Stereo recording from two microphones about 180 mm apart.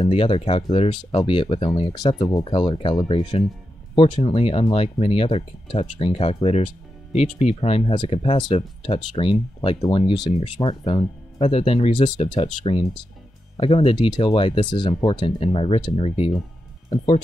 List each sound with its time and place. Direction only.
0.0 s speech: 30° left (ahead or behind)